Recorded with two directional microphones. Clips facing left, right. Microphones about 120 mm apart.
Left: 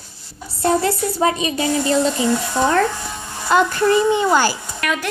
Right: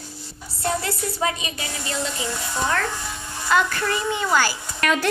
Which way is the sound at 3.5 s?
25° left (ahead or behind).